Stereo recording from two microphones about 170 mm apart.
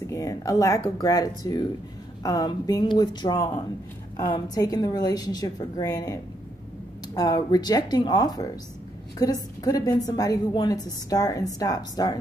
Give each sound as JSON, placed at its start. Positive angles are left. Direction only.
{"t": 0.0, "sound": "a woman's voice", "side_deg": 20}